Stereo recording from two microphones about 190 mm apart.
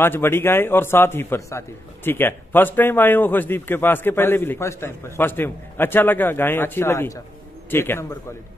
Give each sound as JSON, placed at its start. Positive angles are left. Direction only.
{"t": 0.0, "sound": "speech", "side_deg": 10}